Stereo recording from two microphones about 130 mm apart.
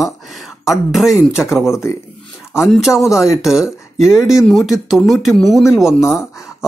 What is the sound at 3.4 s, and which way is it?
Speech, 5° right (ahead or behind).